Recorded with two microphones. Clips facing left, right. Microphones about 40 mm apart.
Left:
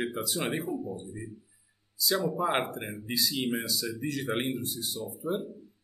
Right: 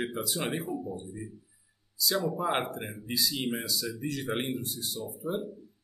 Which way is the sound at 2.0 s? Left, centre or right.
Centre.